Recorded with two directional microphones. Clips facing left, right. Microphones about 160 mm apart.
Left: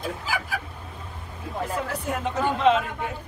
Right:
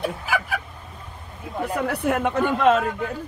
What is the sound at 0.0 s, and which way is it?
Speech, 65° right (ahead or behind).